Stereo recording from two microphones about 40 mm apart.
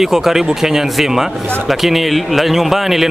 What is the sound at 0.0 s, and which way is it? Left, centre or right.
Speech, centre.